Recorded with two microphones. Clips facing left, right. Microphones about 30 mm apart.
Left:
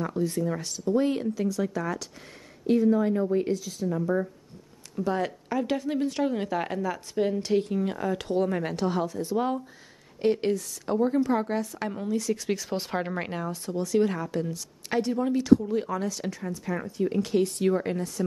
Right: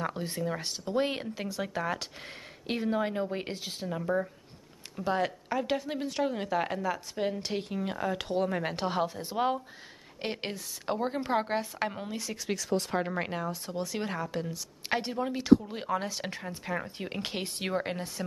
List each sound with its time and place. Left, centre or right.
0.0 s speech: right
2.6 s speech: right
4.9 s speech: centre
8.6 s a woman's voice: right
12.9 s speech: centre
13.7 s speech: centre
14.9 s a woman's voice: right